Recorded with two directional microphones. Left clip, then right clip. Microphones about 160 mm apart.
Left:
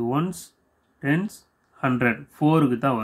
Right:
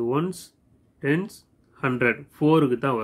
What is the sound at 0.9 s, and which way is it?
Speech, 45° left (ahead or behind).